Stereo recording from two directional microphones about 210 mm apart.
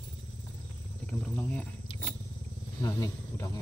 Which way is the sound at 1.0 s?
5° left (ahead or behind).